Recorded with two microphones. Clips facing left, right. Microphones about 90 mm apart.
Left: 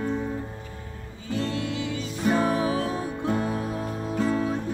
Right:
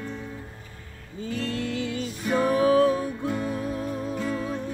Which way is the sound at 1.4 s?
25° left (ahead or behind).